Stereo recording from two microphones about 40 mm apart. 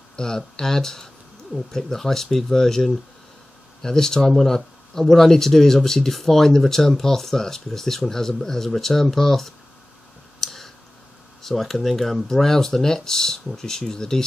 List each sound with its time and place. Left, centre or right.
0.1 s speech: centre
10.4 s clicking: centre
11.4 s speech: centre